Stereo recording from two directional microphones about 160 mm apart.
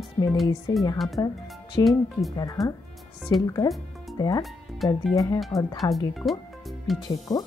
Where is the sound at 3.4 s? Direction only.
25° left (ahead or behind).